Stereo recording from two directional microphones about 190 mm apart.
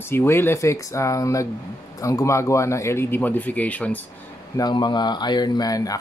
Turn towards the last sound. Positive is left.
turn(degrees=20)  # may be behind; listen again after turning